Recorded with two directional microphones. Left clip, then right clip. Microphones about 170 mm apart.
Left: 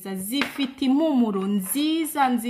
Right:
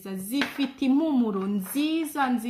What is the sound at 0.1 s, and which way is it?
Speech, 50° left (ahead or behind).